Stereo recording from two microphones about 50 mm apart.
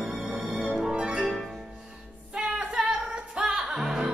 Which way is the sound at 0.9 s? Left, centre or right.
Centre.